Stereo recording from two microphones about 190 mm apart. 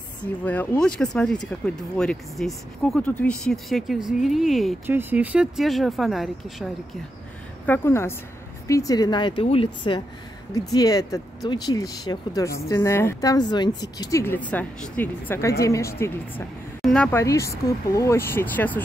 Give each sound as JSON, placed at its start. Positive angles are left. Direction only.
{"t": 0.2, "sound": "speech", "side_deg": 5}
{"t": 7.6, "sound": "speech", "side_deg": 10}
{"t": 17.2, "sound": "speech", "side_deg": 15}